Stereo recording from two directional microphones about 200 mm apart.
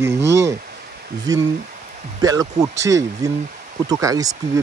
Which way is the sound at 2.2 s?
20° right (ahead or behind).